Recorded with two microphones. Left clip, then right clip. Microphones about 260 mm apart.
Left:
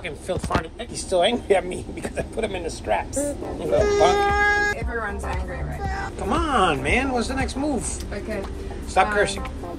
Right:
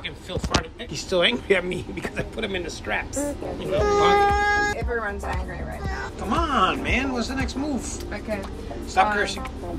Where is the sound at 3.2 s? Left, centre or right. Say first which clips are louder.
Left 2 dB; centre.